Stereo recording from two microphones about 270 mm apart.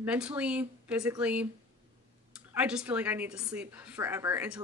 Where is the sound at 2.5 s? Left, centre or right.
Centre.